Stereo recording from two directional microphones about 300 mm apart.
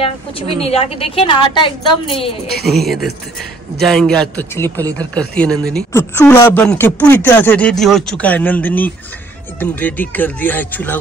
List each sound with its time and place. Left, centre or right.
0.0 s a woman's voice: centre
2.6 s a woman's voice: centre